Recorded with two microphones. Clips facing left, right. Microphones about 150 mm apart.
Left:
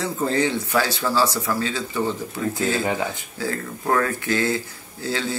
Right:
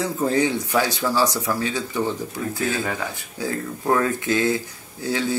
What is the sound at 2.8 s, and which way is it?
Speech, 20° left (ahead or behind).